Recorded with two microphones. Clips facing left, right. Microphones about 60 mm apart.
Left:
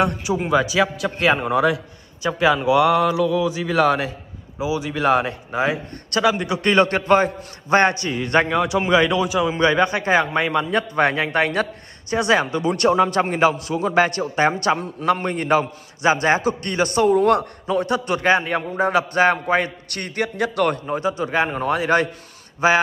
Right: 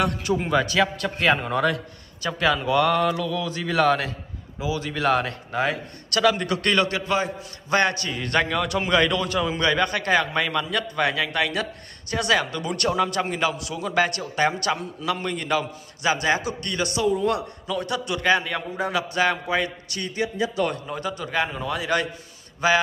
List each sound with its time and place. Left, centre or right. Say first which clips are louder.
0.2 s speech: left 3 dB; centre
6.8 s a man's voice: left 7 dB; left; by 9.5 s centre
9.5 s a man's voice: left 4 dB; left
12.1 s a man's voice: left 4 dB; left
17.1 s a man's voice: left 7 dB; left
17.6 s a man's voice: left 6 dB; left
19.9 s a man's voice: left 2 dB; left
20.7 s a man's voice: left 6 dB; left
21.5 s a man's voice: left 6 dB; left